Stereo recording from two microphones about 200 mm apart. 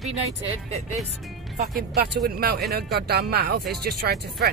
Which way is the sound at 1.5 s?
50° right (ahead or behind).